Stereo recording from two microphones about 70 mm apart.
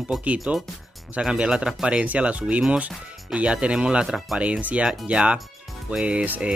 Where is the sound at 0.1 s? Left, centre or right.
Centre.